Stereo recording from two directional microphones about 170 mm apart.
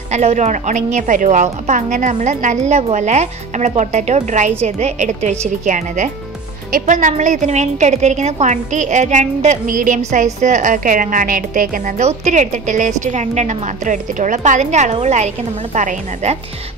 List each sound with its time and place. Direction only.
0.1 s a woman's voice: 40° right (ahead or behind)